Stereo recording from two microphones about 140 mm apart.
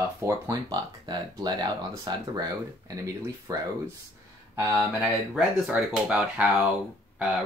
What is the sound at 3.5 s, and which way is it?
Speech, 25° right (ahead or behind).